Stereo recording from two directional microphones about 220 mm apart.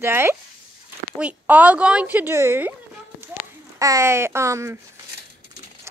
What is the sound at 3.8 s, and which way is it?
Speech, 15° right (ahead or behind).